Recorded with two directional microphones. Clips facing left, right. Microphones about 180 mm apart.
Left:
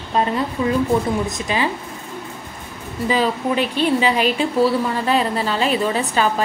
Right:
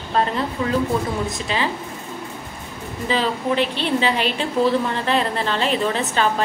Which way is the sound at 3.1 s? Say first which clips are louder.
Left 2 dB; 10° left (ahead or behind).